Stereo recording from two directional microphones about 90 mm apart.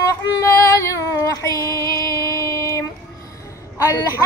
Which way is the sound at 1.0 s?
40° left (ahead or behind).